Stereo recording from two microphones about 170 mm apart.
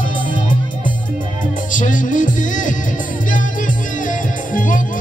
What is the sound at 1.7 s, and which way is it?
Music, 50° left (ahead or behind).